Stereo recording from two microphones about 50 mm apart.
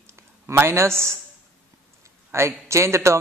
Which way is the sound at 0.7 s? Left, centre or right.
Right.